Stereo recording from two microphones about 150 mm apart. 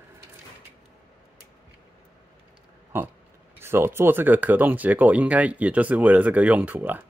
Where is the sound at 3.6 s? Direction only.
15° right (ahead or behind).